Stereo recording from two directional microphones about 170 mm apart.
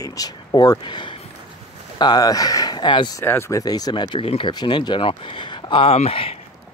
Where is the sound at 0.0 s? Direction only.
20° left (ahead or behind).